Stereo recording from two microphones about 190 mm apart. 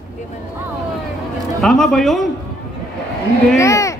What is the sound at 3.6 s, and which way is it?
Speech, 15° left (ahead or behind).